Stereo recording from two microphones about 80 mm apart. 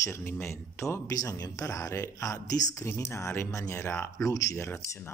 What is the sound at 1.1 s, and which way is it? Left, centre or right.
Speech, left.